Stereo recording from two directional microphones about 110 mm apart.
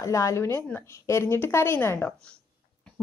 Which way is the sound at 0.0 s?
30° left (ahead or behind).